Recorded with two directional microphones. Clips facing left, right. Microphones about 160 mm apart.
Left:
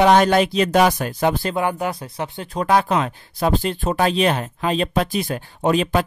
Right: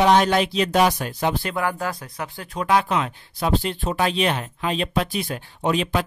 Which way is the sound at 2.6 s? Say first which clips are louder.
Left 3 dB; 40° left (ahead or behind).